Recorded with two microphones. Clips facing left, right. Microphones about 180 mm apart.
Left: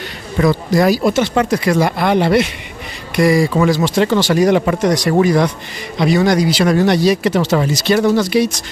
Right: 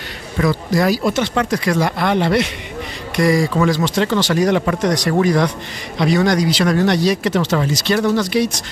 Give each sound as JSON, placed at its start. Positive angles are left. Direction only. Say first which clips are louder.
{"t": 0.4, "sound": "a man's voice", "louder": "left 3 dB", "side_deg": 25}
{"t": 0.8, "sound": "speech", "louder": "left 4 dB", "side_deg": 10}